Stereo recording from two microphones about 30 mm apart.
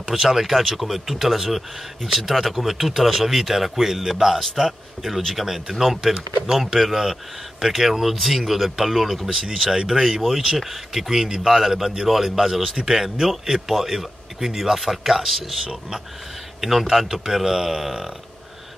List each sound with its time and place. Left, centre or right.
0.3 s speech: centre